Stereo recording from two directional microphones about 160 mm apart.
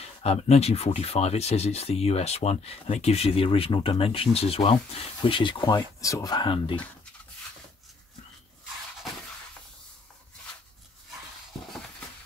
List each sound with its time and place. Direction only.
0.0 s speech: 40° left (ahead or behind)